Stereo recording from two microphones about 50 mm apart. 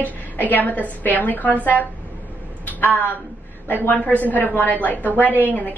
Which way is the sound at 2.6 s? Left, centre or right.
Left.